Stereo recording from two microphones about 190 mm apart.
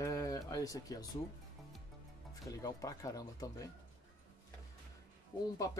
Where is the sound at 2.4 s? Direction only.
15° left (ahead or behind).